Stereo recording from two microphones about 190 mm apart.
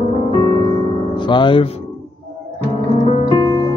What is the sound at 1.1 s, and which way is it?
Music, 25° left (ahead or behind).